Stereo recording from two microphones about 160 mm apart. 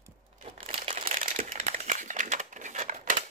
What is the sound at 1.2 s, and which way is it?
Crumpling, 55° right (ahead or behind).